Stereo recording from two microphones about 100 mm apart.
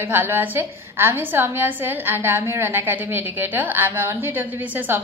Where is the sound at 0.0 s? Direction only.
20° right (ahead or behind).